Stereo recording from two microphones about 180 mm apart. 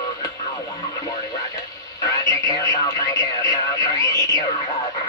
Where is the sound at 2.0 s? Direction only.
20° left (ahead or behind).